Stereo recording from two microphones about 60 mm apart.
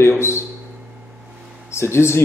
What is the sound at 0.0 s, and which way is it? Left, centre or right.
Speech, left.